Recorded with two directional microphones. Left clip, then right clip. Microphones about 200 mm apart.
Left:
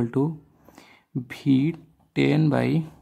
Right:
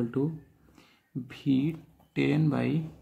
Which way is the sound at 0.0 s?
45° left (ahead or behind).